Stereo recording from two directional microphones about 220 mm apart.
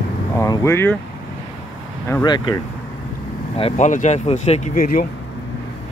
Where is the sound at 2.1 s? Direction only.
20° left (ahead or behind).